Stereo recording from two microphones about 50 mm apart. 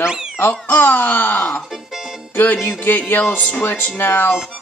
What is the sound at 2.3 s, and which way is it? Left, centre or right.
Music, left.